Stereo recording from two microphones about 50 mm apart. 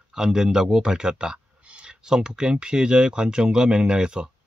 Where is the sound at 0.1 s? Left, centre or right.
Centre.